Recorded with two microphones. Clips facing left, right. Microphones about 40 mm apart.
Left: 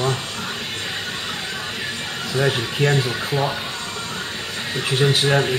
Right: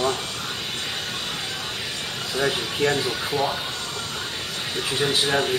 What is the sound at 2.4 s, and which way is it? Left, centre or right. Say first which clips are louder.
Speech: left 2 dB; left.